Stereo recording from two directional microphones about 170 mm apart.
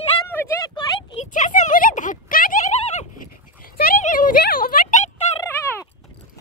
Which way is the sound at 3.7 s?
65° left (ahead or behind).